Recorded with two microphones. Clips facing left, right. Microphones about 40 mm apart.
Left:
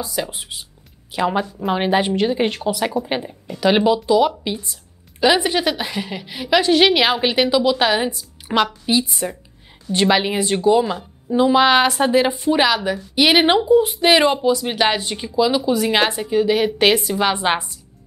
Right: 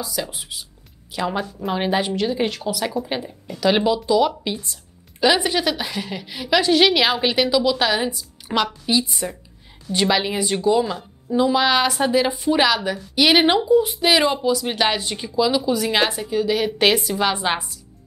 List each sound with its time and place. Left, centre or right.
0.0 s a woman's voice: centre
11.4 s speech: left
12.4 s a woman's voice: centre